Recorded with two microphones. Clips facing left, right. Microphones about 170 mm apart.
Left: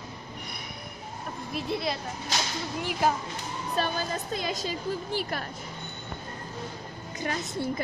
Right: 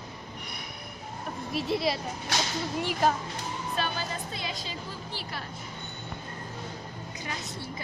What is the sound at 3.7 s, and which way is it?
A woman's voice, 40° left (ahead or behind).